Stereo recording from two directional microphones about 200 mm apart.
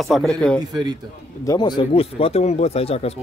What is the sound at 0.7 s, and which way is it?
Speech, 20° right (ahead or behind).